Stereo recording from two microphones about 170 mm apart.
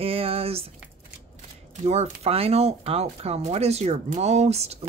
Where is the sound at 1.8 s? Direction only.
40° right (ahead or behind).